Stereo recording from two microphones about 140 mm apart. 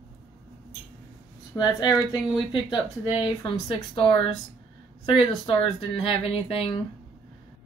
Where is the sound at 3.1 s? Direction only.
35° left (ahead or behind).